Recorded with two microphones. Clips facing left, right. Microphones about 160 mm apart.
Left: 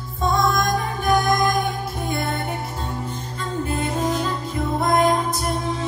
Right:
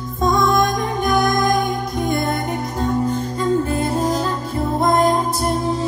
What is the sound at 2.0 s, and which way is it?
Music, 40° right (ahead or behind).